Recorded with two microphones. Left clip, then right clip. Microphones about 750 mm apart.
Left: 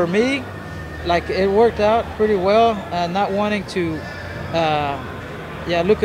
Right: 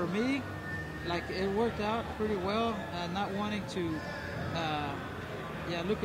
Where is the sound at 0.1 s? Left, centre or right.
Left.